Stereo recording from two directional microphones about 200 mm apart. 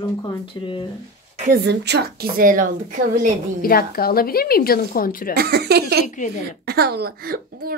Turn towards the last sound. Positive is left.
turn(degrees=-50)  # may be behind; listen again after turning